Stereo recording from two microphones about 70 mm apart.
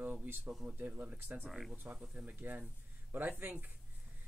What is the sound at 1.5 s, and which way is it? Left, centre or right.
Speech, centre.